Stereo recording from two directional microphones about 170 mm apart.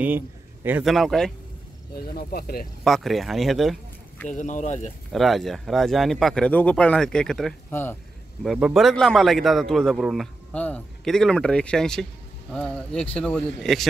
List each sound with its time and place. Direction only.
0.8 s a man's voice: centre (ahead or behind)
2.1 s speech: 65° left (ahead or behind)
2.8 s a man's voice: centre (ahead or behind)
4.3 s speech: 45° left (ahead or behind)
5.1 s a man's voice: centre (ahead or behind)
8.4 s a man's voice: 5° right (ahead or behind)